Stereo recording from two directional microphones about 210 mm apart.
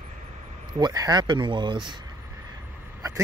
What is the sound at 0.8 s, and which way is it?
Speech, 20° right (ahead or behind).